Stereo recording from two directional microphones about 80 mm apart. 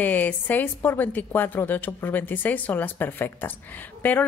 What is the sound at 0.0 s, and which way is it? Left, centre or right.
Speech, left.